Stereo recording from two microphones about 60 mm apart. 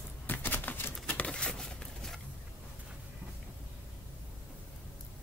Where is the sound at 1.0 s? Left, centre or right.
Left.